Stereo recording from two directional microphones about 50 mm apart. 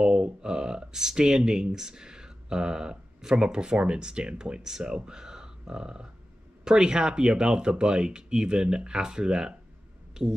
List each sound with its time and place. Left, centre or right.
0.0 s speech: centre